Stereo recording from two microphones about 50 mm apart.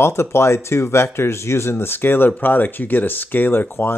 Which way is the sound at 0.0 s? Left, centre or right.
Left.